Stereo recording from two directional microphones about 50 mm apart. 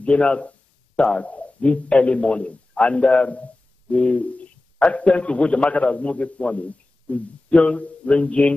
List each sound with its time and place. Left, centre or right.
0.0 s a man's voice: left